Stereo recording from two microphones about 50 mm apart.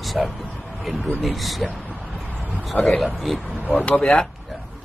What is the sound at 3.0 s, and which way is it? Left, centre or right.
Speech, centre.